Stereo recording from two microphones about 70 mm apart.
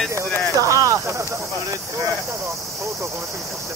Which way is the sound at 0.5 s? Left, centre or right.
Right.